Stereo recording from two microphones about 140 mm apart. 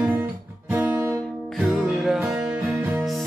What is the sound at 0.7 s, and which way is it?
Guitar, 10° right (ahead or behind).